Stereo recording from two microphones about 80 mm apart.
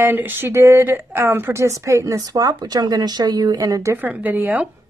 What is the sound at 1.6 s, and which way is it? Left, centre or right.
Speech, right.